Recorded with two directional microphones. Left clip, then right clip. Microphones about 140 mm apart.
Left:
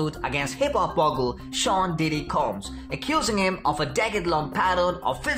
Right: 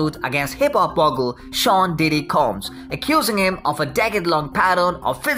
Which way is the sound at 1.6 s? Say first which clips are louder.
Right 7 dB; 40° right (ahead or behind).